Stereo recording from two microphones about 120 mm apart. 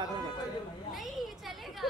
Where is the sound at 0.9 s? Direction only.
Centre (ahead or behind).